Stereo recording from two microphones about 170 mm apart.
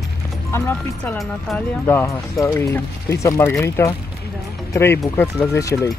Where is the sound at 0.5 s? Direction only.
10° left (ahead or behind).